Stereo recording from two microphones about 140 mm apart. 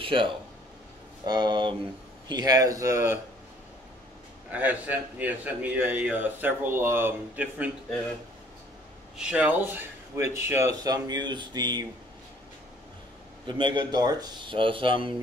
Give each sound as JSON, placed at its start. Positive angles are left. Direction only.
{"t": 0.0, "sound": "speech", "side_deg": -40}
{"t": 4.5, "sound": "a man's voice", "side_deg": -10}
{"t": 9.1, "sound": "speech", "side_deg": -10}
{"t": 13.5, "sound": "speech", "side_deg": -35}